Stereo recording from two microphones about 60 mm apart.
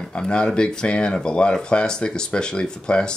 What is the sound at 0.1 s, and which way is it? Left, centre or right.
Speech, centre.